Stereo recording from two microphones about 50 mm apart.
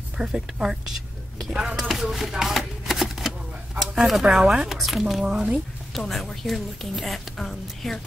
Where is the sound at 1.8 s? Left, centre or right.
Centre.